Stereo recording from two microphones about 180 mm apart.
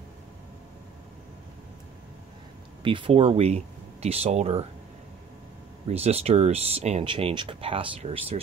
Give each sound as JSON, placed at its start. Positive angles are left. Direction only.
{"t": 2.8, "sound": "speech", "side_deg": -30}
{"t": 5.9, "sound": "speech", "side_deg": -35}